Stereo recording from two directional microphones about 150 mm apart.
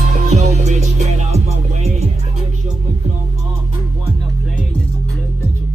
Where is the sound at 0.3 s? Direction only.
50° right (ahead or behind).